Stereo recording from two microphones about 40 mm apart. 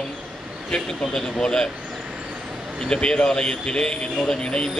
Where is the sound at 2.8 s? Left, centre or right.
Left.